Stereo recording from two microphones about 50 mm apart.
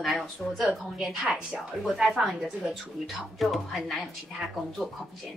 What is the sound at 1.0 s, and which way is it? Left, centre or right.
Speech, centre.